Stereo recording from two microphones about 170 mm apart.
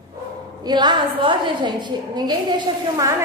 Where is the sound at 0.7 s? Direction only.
25° right (ahead or behind).